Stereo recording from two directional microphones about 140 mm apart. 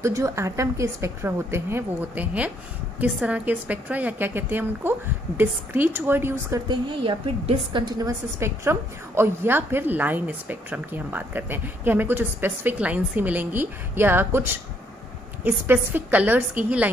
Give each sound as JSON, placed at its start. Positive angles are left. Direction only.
{"t": 0.0, "sound": "a woman's voice", "side_deg": -20}
{"t": 6.7, "sound": "a woman's voice", "side_deg": -35}
{"t": 8.4, "sound": "a woman's voice", "side_deg": -20}